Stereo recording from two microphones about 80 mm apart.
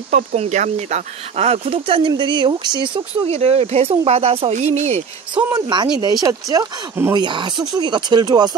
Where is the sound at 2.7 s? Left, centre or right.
Right.